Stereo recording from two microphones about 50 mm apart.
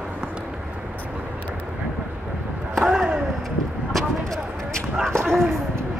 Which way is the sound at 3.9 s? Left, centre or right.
Centre.